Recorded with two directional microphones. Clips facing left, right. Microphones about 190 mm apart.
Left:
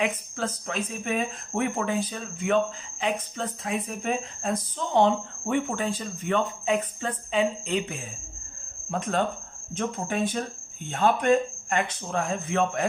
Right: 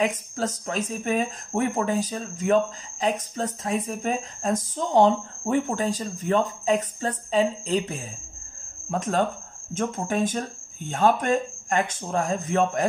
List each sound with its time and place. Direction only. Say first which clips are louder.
0.0 s speech: right 3 dB; 40° right (ahead or behind)